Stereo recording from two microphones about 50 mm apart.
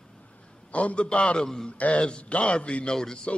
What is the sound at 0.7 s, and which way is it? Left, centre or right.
A man's voice, left.